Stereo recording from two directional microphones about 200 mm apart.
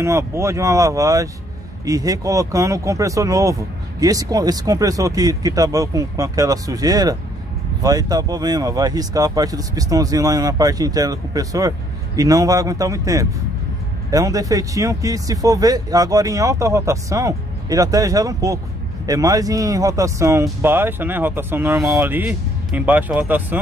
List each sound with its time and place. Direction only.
0.0 s speech: 15° right (ahead or behind)